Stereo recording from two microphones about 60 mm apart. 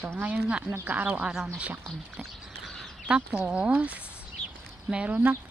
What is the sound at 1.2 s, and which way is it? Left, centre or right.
Speech, centre.